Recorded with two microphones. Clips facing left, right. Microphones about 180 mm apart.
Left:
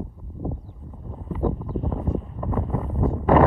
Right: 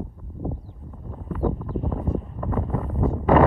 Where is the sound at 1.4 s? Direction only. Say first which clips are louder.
Even; 5° right (ahead or behind).